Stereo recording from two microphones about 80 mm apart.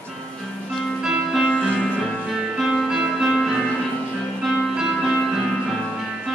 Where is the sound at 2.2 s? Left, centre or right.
Centre.